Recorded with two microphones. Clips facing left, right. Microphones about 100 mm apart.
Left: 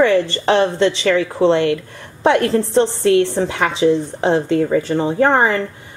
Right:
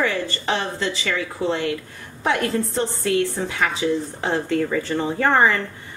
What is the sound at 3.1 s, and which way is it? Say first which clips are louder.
Speech: left 7 dB; 75° left (ahead or behind).